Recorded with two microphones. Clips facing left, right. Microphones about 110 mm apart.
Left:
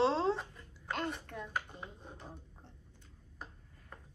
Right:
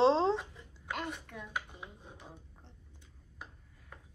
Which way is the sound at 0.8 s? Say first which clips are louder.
Left 1 dB; centre (ahead or behind).